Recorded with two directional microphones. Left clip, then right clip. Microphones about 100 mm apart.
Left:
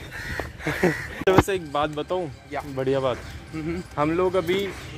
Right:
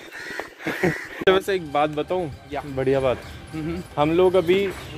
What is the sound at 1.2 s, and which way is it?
Speech, 25° right (ahead or behind).